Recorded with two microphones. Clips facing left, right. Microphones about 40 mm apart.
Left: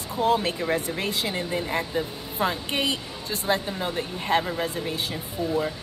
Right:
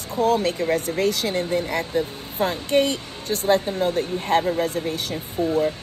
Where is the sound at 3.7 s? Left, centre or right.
Left.